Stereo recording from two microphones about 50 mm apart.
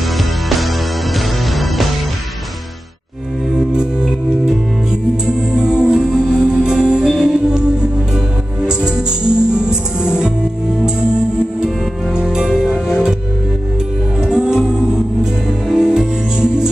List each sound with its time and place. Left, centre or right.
1.1 s music: centre
3.5 s music: centre
11.6 s music: centre
14.2 s music: centre